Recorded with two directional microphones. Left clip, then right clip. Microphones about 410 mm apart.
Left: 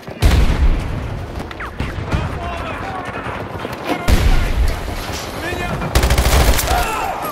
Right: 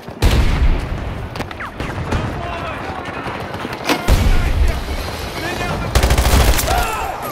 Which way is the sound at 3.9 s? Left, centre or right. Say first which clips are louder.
Right 4 dB; centre.